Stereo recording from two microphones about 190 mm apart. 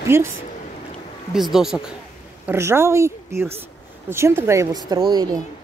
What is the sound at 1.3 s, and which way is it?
Speech, centre (ahead or behind).